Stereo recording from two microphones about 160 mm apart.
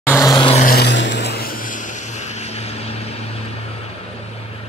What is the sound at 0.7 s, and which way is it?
Vehicle, 85° left.